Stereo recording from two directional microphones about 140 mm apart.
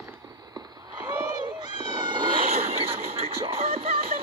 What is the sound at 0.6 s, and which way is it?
Cat, 30° right (ahead or behind).